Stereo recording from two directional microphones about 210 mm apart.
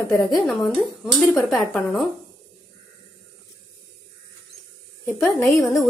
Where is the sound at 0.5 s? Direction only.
Centre (ahead or behind).